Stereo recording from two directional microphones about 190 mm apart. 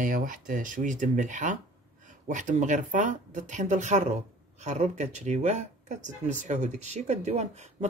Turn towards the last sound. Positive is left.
turn(degrees=-35)  # may be behind; listen again after turning